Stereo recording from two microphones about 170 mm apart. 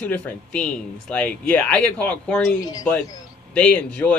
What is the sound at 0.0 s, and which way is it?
Speech, 5° left (ahead or behind).